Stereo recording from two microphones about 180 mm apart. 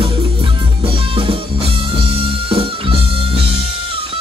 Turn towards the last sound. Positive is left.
turn(degrees=-30)  # may be behind; listen again after turning